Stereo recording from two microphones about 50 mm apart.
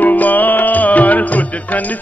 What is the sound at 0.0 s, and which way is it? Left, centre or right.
Music, left.